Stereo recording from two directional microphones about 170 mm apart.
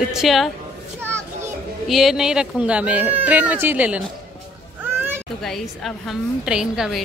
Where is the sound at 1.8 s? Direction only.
Centre (ahead or behind).